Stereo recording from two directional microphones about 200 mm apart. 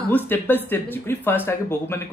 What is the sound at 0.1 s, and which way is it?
Speech, 10° left (ahead or behind).